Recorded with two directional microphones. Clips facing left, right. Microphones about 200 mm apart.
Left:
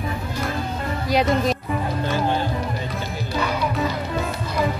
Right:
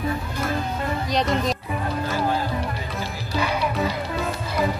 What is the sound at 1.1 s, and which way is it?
Speech, centre (ahead or behind).